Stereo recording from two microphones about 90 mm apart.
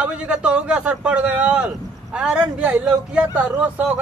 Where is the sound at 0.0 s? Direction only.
15° right (ahead or behind).